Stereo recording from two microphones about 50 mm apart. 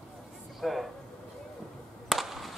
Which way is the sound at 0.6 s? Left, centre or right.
Centre.